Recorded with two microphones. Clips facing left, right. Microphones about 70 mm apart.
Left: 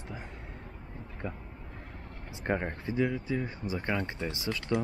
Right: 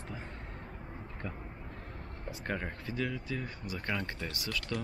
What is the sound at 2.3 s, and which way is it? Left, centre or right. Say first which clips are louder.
Speech: left 5 dB; left.